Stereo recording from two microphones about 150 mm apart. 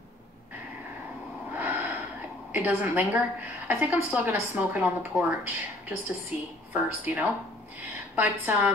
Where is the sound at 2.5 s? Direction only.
15° right (ahead or behind).